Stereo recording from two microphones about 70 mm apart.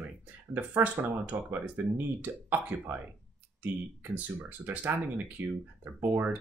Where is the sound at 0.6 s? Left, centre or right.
Right.